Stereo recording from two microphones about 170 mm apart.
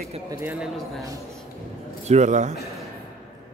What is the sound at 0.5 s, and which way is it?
Speech, centre (ahead or behind).